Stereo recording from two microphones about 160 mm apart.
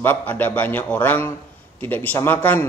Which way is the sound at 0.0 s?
10° left (ahead or behind).